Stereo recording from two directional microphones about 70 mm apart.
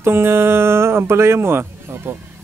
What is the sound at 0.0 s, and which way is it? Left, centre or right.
Speech, right.